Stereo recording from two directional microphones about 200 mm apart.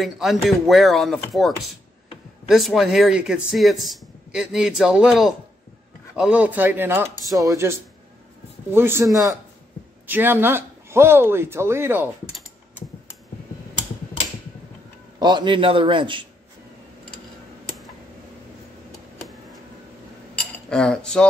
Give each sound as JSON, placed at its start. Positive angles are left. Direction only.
{"t": 0.0, "sound": "speech", "side_deg": 0}
{"t": 15.1, "sound": "a man's voice", "side_deg": -20}
{"t": 20.7, "sound": "speech", "side_deg": 5}